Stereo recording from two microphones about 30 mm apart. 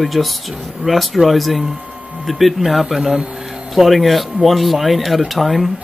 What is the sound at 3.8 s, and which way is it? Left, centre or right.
Speech, centre.